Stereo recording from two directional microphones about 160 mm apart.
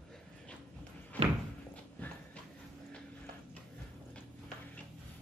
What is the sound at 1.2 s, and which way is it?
Slam, 40° right (ahead or behind).